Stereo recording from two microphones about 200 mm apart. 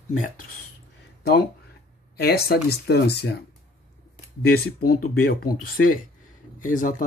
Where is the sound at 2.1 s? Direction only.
50° left (ahead or behind).